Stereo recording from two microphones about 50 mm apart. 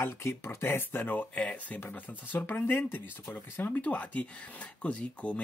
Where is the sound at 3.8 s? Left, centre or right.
Left.